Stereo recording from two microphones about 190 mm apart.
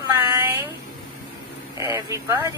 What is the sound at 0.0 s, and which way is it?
Cat, 10° right (ahead or behind).